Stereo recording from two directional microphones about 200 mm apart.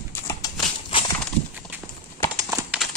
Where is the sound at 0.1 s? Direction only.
15° left (ahead or behind).